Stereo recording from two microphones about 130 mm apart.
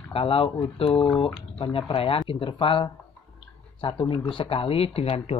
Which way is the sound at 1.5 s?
40° left (ahead or behind).